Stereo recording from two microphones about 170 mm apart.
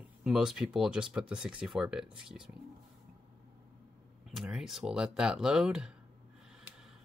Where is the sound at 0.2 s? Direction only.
5° right (ahead or behind).